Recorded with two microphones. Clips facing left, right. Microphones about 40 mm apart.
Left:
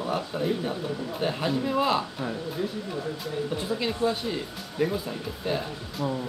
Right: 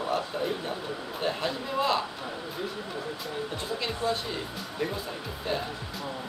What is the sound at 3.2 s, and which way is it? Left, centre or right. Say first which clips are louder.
Speech: left 4 dB; centre.